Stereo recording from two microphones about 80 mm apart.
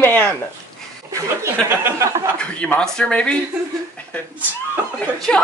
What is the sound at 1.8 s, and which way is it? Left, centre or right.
Speech, right.